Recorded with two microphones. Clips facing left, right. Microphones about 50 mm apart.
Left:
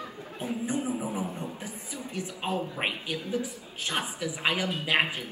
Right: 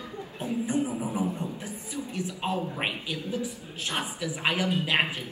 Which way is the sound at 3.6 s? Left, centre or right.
Right.